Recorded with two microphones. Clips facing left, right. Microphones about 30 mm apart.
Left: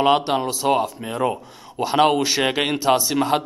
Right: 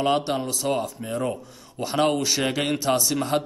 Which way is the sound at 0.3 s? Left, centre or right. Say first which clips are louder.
Left 5 dB; left.